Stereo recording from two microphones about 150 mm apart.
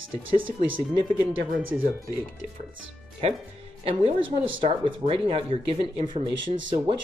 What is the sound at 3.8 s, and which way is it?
Speech, 40° right (ahead or behind).